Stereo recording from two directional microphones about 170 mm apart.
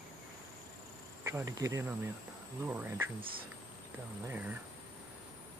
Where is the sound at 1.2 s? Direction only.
15° right (ahead or behind).